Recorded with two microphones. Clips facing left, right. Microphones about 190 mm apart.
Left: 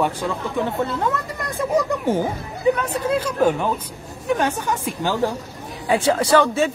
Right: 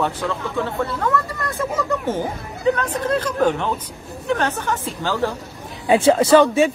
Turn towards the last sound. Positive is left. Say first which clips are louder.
# right 4 dB
turn(degrees=-15)  # may be behind; listen again after turning